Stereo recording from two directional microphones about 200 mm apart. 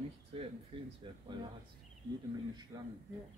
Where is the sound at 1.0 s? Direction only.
25° right (ahead or behind).